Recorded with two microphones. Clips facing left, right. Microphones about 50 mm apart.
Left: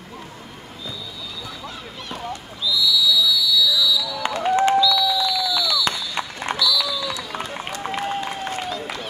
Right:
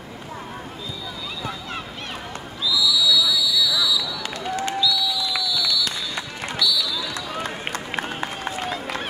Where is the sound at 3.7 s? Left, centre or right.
Right.